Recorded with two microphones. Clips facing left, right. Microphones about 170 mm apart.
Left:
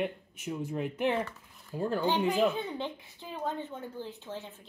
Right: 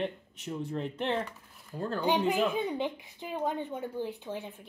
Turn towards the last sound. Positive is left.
turn(degrees=-15)  # may be behind; listen again after turning